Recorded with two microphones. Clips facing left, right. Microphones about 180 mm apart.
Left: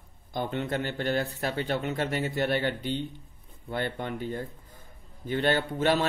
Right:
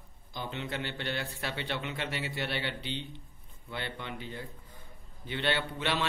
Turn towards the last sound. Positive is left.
turn(degrees=45)  # may be behind; listen again after turning